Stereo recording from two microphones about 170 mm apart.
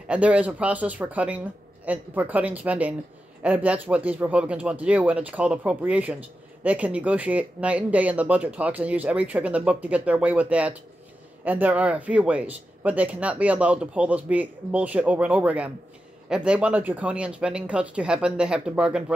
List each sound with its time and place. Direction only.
0.1 s speech: 10° right (ahead or behind)